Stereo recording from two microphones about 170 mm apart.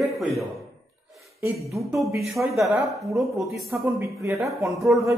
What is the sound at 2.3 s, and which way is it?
Speech, centre (ahead or behind).